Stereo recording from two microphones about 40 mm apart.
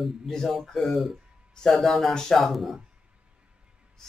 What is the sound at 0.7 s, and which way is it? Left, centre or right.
Speech, centre.